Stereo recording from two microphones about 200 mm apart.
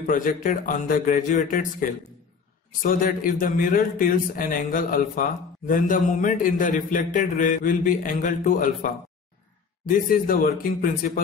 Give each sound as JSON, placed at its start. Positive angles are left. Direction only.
{"t": 0.0, "sound": "a man's voice", "side_deg": 45}